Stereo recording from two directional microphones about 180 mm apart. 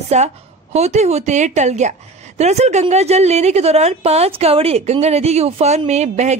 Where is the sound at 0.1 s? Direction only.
40° right (ahead or behind).